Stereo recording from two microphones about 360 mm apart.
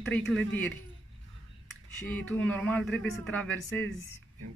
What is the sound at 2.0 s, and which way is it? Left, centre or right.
Speech, centre.